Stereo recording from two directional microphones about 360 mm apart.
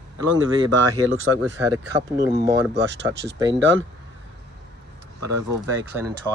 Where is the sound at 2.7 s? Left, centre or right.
Right.